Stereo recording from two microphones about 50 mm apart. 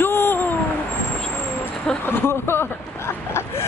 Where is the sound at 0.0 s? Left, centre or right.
Left.